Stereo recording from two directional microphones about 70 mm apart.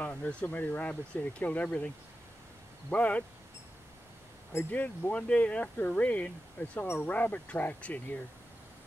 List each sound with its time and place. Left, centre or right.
0.0 s speech: left
2.9 s speech: left
4.6 s speech: left